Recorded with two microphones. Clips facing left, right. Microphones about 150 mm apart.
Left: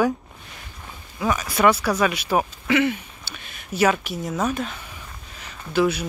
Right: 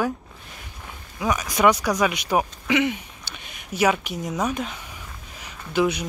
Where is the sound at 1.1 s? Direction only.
10° right (ahead or behind).